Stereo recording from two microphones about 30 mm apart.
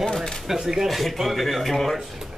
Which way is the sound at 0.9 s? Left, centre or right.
Centre.